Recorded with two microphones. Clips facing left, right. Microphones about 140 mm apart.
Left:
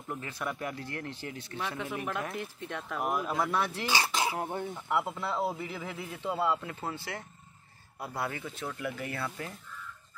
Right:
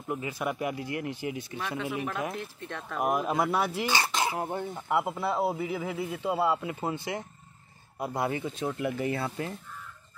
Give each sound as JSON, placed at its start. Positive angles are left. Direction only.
{"t": 0.1, "sound": "a man's voice", "side_deg": -10}
{"t": 2.3, "sound": "speech", "side_deg": 15}
{"t": 3.0, "sound": "a man's voice", "side_deg": -20}
{"t": 3.9, "sound": "speech", "side_deg": 10}
{"t": 4.4, "sound": "a man's voice", "side_deg": -5}
{"t": 9.7, "sound": "fowl", "side_deg": -55}